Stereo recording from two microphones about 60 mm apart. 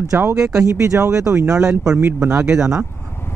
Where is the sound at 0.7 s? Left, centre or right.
Right.